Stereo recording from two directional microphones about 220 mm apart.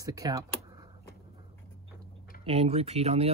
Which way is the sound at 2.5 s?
30° right (ahead or behind).